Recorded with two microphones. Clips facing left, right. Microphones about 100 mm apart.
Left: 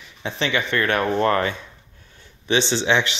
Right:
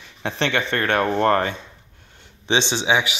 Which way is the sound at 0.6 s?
40° right (ahead or behind).